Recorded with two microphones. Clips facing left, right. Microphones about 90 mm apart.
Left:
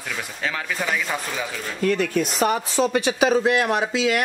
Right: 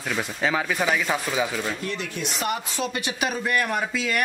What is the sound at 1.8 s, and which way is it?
Speech, 50° left (ahead or behind).